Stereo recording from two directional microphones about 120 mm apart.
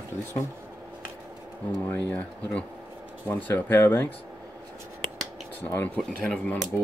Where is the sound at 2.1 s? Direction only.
10° left (ahead or behind).